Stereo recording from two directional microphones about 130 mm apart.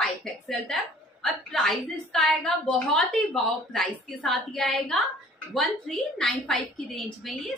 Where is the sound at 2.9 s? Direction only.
5° left (ahead or behind).